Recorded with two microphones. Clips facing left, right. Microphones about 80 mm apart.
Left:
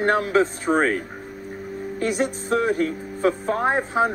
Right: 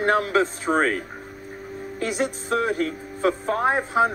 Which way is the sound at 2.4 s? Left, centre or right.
Left.